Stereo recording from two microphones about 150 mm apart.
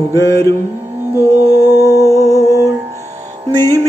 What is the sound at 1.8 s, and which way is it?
Music, 20° left (ahead or behind).